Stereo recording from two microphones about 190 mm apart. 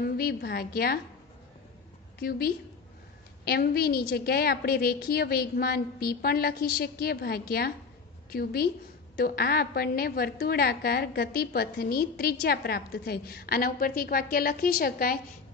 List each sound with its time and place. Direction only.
0.0 s a woman's voice: 55° left (ahead or behind)
2.1 s a woman's voice: 55° left (ahead or behind)